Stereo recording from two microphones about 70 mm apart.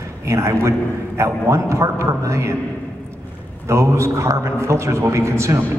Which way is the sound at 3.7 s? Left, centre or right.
Right.